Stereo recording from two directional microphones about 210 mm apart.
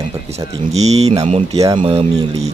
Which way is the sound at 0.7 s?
30° right (ahead or behind).